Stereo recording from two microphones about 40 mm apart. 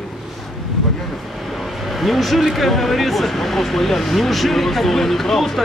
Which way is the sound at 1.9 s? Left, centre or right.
Centre.